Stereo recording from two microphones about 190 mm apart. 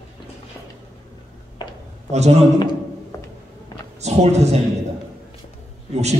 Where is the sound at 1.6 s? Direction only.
25° left (ahead or behind).